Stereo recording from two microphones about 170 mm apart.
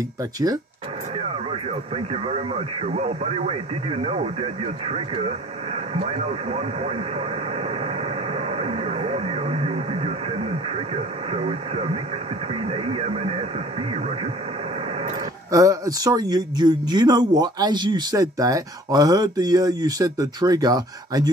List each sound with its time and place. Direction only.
1.5 s speech: 35° right (ahead or behind)
7.8 s radio: 35° right (ahead or behind)
12.6 s speech: 35° right (ahead or behind)
15.5 s speech: 20° right (ahead or behind)